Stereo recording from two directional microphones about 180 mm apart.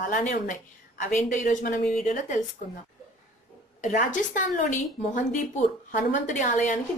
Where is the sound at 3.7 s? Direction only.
45° left (ahead or behind).